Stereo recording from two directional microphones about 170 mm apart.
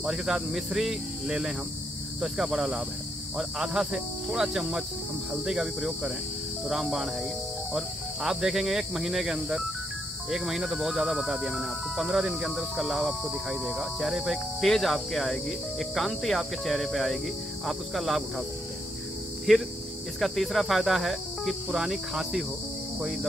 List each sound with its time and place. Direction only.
0.0 s speech: 5° right (ahead or behind)
19.5 s speech: centre (ahead or behind)